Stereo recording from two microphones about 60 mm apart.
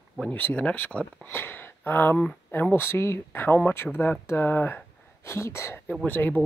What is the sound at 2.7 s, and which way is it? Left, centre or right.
Speech, left.